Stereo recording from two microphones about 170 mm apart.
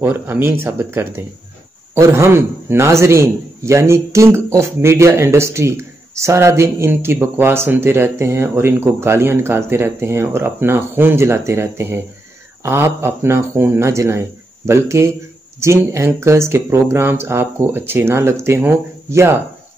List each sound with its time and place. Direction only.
0.0 s a man's voice: 10° right (ahead or behind)